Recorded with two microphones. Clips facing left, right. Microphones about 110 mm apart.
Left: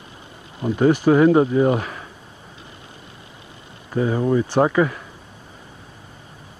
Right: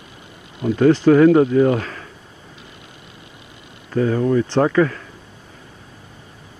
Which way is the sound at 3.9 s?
20° left (ahead or behind).